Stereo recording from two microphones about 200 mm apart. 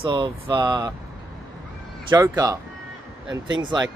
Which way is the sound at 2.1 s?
20° right (ahead or behind).